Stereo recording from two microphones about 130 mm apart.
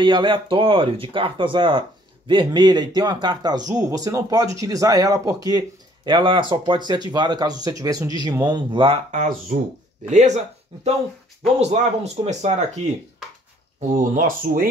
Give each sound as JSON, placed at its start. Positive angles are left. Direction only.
{"t": 0.0, "sound": "speech", "side_deg": -35}
{"t": 9.1, "sound": "speech", "side_deg": -75}
{"t": 10.0, "sound": "speech", "side_deg": -65}
{"t": 13.7, "sound": "speech", "side_deg": -90}